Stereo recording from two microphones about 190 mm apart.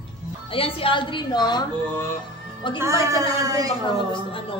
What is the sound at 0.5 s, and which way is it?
A woman's voice, 30° left (ahead or behind).